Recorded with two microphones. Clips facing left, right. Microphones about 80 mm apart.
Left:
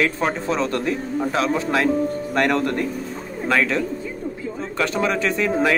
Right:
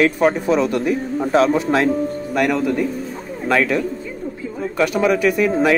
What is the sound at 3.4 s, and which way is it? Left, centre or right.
Speech, centre.